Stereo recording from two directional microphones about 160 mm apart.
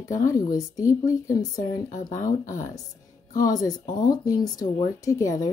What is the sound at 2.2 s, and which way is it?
Speech, 20° left (ahead or behind).